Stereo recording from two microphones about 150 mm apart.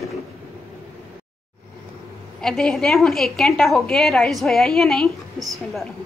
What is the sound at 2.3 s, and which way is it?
A woman's voice, 5° left (ahead or behind).